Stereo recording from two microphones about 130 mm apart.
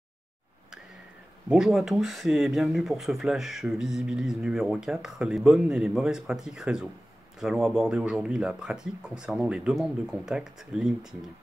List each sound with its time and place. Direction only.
1.5 s speech: 5° right (ahead or behind)